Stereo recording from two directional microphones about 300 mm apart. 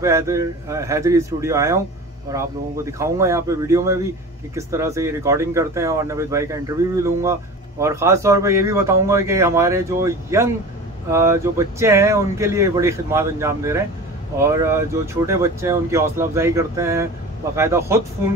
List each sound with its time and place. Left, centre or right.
0.0 s speech: centre